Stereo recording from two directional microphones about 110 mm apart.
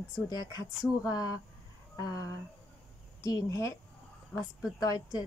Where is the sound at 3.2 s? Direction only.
30° left (ahead or behind).